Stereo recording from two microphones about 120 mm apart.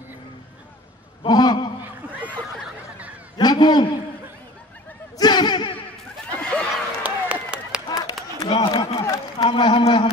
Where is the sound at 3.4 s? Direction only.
35° left (ahead or behind).